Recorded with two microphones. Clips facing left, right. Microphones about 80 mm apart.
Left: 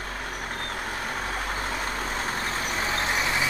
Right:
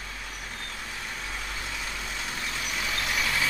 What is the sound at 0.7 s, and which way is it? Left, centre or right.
Vehicle, left.